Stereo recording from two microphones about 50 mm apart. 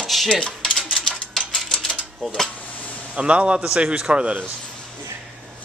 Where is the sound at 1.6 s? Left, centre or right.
Centre.